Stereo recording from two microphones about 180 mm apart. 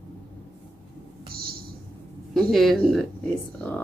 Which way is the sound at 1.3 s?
55° right (ahead or behind).